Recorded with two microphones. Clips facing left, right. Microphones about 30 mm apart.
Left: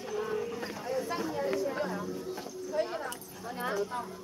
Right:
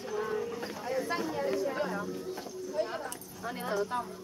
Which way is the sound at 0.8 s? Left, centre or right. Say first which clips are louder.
Right 1 dB; centre.